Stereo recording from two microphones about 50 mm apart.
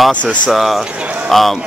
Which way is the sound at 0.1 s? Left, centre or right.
Left.